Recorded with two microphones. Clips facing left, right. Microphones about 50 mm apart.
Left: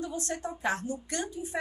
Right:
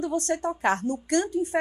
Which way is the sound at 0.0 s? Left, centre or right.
Right.